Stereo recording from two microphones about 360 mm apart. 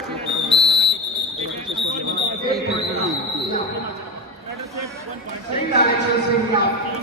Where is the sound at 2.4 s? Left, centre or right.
Right.